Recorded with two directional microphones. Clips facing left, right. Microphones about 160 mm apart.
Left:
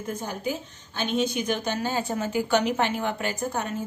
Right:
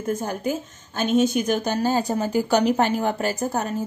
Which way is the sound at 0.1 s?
45° right (ahead or behind).